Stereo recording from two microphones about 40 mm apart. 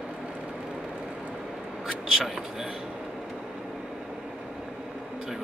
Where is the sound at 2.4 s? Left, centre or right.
Centre.